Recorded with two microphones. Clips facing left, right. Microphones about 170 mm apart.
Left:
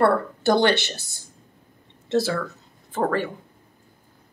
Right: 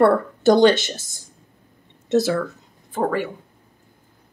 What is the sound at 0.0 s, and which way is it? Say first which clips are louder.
A woman's voice: right 4 dB; 20° right (ahead or behind).